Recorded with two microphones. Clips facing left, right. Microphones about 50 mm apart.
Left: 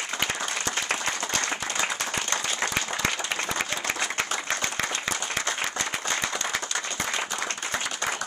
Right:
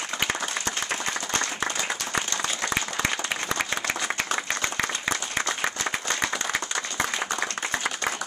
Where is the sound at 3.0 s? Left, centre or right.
Centre.